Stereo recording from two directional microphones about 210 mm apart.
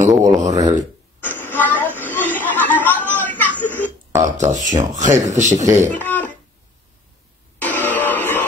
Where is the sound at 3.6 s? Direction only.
10° left (ahead or behind).